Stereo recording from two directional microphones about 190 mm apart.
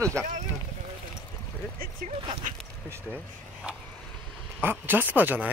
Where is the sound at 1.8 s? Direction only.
45° right (ahead or behind).